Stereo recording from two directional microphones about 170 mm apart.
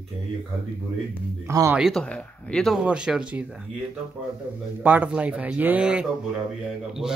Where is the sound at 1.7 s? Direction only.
Centre (ahead or behind).